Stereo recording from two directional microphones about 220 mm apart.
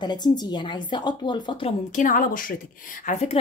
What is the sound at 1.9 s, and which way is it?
Speech, 40° left (ahead or behind).